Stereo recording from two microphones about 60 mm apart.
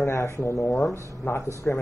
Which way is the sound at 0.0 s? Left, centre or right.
Left.